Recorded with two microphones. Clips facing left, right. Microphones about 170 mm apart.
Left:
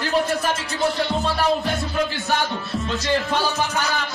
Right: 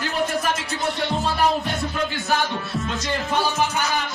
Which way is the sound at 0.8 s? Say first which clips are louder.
Left 4 dB; centre (ahead or behind).